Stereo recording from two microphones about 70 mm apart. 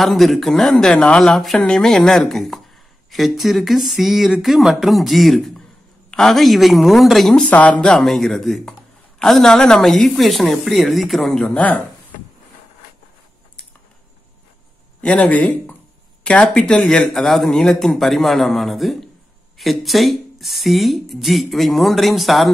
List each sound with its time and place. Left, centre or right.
0.0 s speech: centre
7.4 s speech: left; by 11.5 s centre
11.5 s speech: left
15.0 s speech: centre
16.4 s speech: centre